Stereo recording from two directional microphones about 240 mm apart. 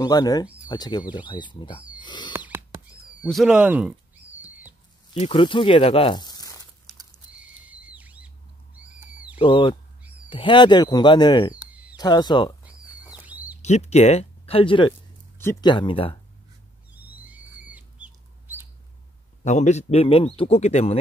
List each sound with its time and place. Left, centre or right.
0.0 s speech: centre
2.0 s owl: centre
2.3 s rodents: centre
3.3 s a sound: centre
5.2 s speech: left
7.7 s bird flight: centre
8.7 s owl: centre
9.4 s speech: left
11.5 s a sound: centre
12.0 s speech: centre
13.2 s a sound: centre
13.6 s speech: left
16.9 s bird: centre
19.4 s speech: left